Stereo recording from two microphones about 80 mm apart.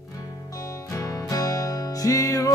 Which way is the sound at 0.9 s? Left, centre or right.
Left.